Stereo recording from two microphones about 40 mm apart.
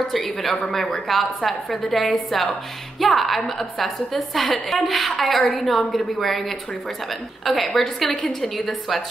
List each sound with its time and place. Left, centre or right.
0.1 s a woman's voice: centre
5.4 s a woman's voice: left
5.7 s a woman's voice: centre
7.4 s a woman's voice: centre
8.1 s a woman's voice: centre
8.4 s a woman's voice: centre